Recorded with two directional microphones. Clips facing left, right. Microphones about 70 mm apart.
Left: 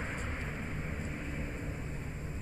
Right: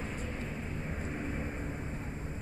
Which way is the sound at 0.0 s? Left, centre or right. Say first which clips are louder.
Even; left.